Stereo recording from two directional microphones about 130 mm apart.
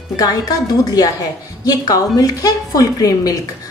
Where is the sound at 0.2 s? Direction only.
30° left (ahead or behind).